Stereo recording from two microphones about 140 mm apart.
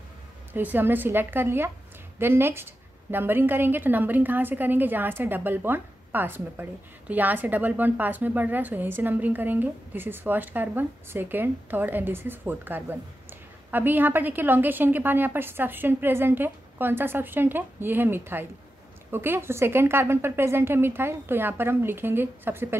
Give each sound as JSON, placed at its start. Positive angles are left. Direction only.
{"t": 0.5, "sound": "a woman's voice", "side_deg": -15}